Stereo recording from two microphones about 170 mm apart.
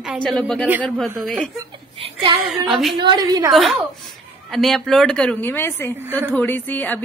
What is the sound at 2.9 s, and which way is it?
Speech, 25° right (ahead or behind).